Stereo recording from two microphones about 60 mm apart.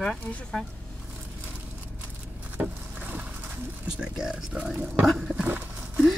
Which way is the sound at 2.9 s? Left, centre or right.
Right.